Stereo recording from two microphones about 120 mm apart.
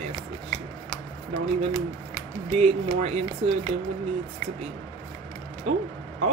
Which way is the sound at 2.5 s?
65° right (ahead or behind).